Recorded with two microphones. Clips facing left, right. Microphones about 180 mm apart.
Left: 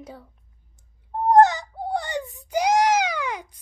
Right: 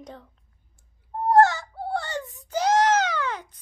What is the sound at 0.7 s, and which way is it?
Wail, 20° left (ahead or behind).